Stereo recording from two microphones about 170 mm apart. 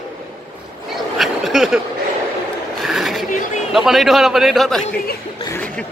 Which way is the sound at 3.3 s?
50° left (ahead or behind).